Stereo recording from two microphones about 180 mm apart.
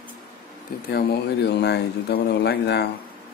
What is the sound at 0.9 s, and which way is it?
Speech, 60° left (ahead or behind).